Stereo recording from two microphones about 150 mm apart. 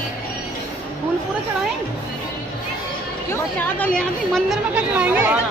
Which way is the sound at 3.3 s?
10° left (ahead or behind).